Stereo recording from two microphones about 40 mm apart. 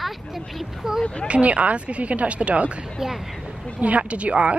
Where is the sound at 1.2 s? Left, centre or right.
Right.